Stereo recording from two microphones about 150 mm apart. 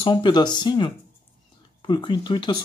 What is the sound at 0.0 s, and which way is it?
Speech, 30° left (ahead or behind).